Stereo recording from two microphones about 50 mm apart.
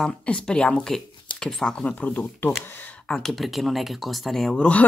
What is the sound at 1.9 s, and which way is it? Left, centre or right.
Speech, left.